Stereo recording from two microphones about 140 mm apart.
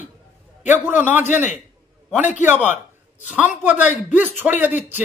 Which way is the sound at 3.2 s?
10° right (ahead or behind).